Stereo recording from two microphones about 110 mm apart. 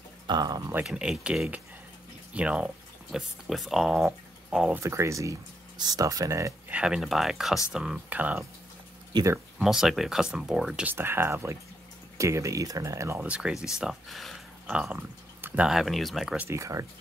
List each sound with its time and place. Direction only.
0.3 s speech: 40° right (ahead or behind)
0.8 s speech: 5° right (ahead or behind)
4.7 s speech: 25° right (ahead or behind)
6.7 s speech: 10° right (ahead or behind)
9.6 s speech: 5° right (ahead or behind)
10.9 s speech: 20° right (ahead or behind)
13.2 s speech: 10° right (ahead or behind)
14.7 s speech: 10° right (ahead or behind)
16.4 s speech: 30° right (ahead or behind)